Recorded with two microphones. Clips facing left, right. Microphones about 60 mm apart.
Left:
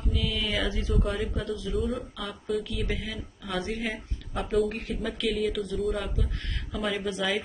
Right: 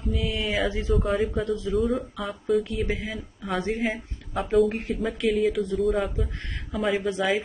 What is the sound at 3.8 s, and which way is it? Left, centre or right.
Speech, centre.